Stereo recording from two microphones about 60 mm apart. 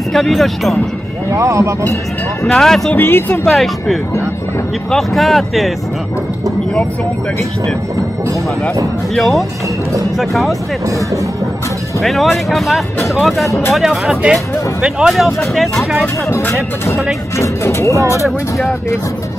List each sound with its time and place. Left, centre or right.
0.1 s speech: centre
1.3 s speech: right
2.4 s speech: centre
3.0 s speech: left
3.4 s speech: centre
9.1 s speech: centre
12.0 s speech: centre
17.4 s speech: left